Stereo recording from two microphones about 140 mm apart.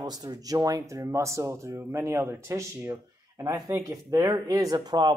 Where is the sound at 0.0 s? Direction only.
30° right (ahead or behind).